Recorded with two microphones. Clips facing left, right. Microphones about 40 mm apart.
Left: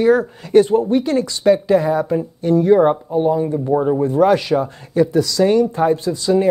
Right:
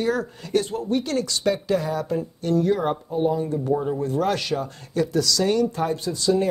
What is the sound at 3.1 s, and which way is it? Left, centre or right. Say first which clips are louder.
Speech: left 2 dB; centre.